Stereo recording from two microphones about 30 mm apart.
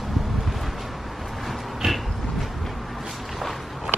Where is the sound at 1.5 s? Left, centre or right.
Centre.